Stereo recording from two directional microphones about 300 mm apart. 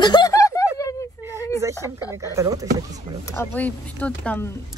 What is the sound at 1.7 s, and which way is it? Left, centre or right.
Speech, centre.